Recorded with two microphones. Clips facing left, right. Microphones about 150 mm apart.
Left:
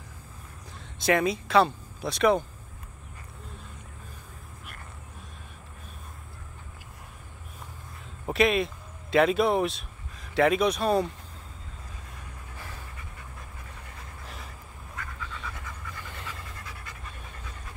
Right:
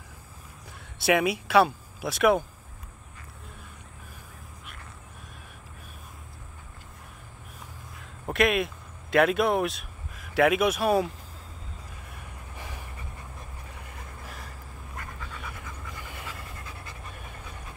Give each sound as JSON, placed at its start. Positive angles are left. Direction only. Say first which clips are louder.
{"t": 1.0, "sound": "speech", "louder": "right 1 dB", "side_deg": -10}
{"t": 8.3, "sound": "speech", "louder": "left 1 dB", "side_deg": 0}
{"t": 12.5, "sound": "vehicle", "louder": "right 2 dB", "side_deg": -15}
{"t": 16.0, "sound": "pant", "louder": "even", "side_deg": -10}